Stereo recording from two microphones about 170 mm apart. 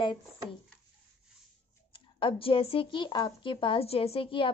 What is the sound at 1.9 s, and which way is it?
A woman's voice, 30° left (ahead or behind).